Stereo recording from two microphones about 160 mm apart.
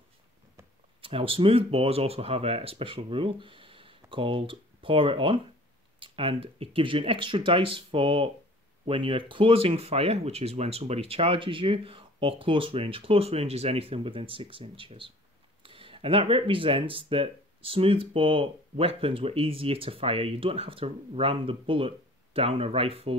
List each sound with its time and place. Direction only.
1.0 s speech: 35° right (ahead or behind)